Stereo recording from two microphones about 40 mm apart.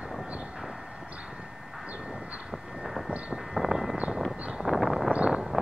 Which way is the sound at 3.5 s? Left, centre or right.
Centre.